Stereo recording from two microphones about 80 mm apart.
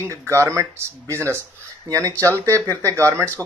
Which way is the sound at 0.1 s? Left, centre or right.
Right.